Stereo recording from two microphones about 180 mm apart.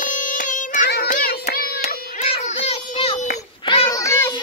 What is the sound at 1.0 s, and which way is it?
Music, 50° left (ahead or behind).